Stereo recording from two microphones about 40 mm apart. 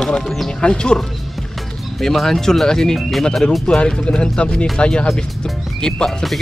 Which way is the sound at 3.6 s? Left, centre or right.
Left.